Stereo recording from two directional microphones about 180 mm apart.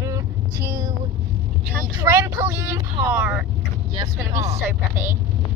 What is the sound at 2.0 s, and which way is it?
Speech, 15° right (ahead or behind).